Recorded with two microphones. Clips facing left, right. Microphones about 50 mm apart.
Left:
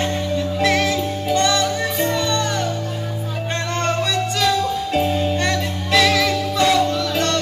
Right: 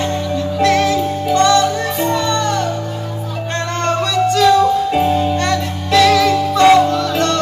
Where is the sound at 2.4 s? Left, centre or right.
Centre.